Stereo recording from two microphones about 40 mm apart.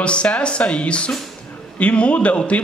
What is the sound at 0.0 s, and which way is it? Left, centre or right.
A man's voice, left.